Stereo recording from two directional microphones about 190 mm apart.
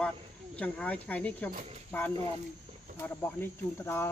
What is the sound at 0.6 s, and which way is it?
Speech, 10° left (ahead or behind).